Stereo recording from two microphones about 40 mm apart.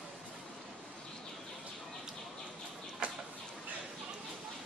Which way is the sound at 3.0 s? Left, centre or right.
Right.